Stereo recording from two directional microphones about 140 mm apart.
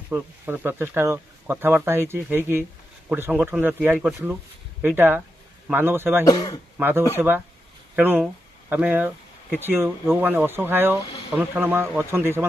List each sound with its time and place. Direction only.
0.1 s speech: 15° right (ahead or behind)
6.2 s speech: 25° left (ahead or behind)
6.8 s speech: 15° right (ahead or behind)